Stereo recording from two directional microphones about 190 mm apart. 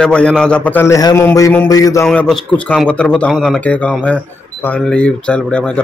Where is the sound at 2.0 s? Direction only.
Centre (ahead or behind).